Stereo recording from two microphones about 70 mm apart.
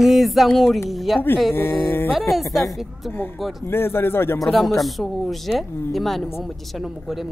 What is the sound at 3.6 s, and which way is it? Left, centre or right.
Speech, left.